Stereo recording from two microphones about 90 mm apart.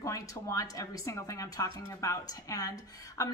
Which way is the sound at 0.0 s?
35° left (ahead or behind).